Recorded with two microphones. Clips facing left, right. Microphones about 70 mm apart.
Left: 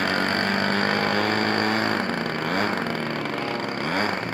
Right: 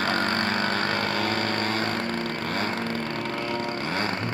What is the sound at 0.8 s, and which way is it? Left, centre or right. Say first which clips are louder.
Vehicle: left 3 dB; left.